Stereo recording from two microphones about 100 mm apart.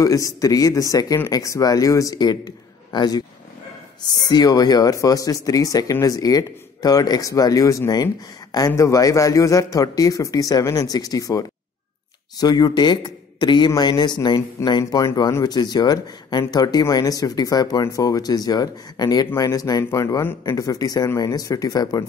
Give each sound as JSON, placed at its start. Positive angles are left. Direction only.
{"t": 0.0, "sound": "speech", "side_deg": 35}
{"t": 4.3, "sound": "speech", "side_deg": 40}